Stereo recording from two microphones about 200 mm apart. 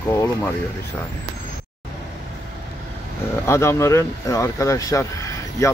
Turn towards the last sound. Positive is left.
turn(degrees=15)  # may be behind; listen again after turning